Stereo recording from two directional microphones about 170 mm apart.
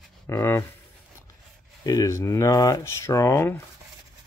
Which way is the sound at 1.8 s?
20° left (ahead or behind).